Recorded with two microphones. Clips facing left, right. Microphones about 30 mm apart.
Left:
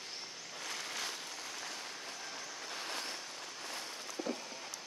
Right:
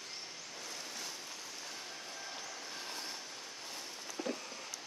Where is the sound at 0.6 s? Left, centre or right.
Left.